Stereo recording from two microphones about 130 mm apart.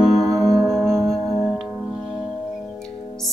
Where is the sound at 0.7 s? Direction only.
Centre (ahead or behind).